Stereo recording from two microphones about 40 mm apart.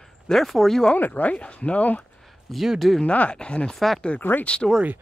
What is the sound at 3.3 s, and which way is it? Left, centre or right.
Speech, left.